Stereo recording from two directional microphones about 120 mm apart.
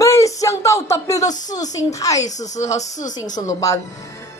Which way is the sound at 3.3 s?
30° left (ahead or behind).